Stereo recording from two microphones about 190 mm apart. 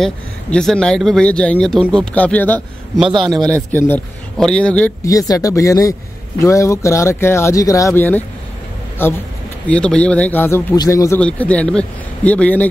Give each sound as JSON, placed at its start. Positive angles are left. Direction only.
{"t": 0.0, "sound": "speech", "side_deg": 5}
{"t": 3.1, "sound": "speech", "side_deg": -25}
{"t": 3.4, "sound": "a man's voice", "side_deg": 10}